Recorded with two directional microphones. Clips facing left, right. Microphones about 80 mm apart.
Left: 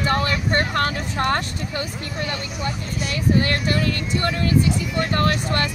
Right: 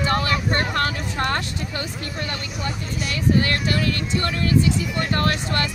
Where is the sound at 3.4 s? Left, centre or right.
Left.